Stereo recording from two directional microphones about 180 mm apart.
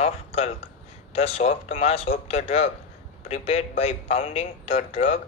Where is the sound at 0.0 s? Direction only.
35° left (ahead or behind).